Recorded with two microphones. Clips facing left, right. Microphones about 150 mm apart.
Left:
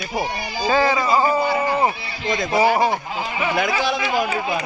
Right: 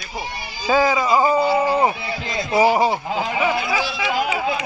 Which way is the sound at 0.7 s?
10° right (ahead or behind).